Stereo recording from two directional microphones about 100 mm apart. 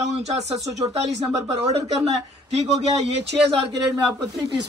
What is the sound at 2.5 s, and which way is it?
Speech, 90° right.